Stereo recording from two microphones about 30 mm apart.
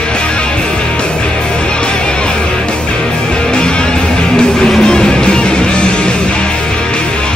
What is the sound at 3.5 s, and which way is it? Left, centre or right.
Music, left.